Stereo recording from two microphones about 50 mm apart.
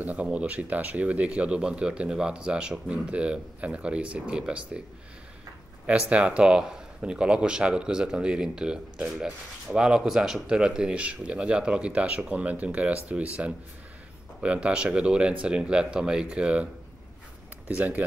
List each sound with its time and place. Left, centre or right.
0.0 s speech: right
5.9 s speech: right
17.6 s speech: right